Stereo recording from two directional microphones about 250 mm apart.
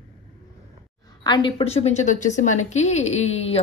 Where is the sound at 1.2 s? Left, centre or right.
Centre.